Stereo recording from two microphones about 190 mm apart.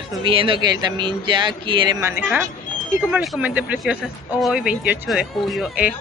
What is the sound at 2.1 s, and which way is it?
Speech, 10° right (ahead or behind).